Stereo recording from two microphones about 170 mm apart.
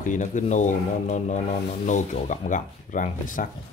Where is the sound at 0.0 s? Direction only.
50° left (ahead or behind).